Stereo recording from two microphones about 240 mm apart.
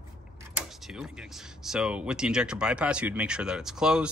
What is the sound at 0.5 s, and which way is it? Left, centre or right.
Speech, centre.